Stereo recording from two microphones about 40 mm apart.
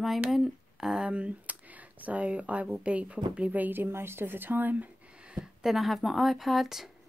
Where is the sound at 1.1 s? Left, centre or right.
Right.